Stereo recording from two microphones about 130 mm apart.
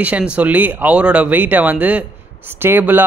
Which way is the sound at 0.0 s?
10° right (ahead or behind).